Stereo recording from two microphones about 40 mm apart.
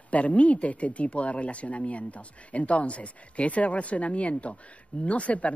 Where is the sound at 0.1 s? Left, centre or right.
Left.